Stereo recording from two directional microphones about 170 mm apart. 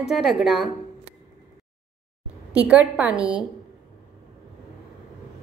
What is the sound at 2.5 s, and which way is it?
Speech, 5° right (ahead or behind).